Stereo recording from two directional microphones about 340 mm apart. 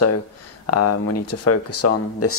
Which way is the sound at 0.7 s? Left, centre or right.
Left.